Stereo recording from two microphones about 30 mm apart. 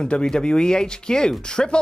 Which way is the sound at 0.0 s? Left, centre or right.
Left.